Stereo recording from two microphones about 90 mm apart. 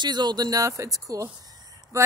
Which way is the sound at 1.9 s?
35° right (ahead or behind).